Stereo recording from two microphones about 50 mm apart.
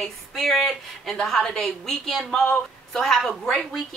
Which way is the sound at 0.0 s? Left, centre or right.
Centre.